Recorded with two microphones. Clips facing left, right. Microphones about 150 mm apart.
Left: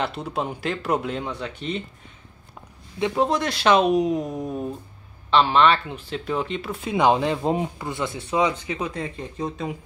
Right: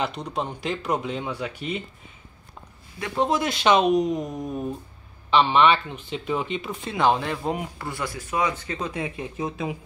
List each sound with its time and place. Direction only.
0.0 s speech: 5° left (ahead or behind)
3.2 s speech: centre (ahead or behind)
6.9 s speech: 15° left (ahead or behind)
8.9 s speech: 10° right (ahead or behind)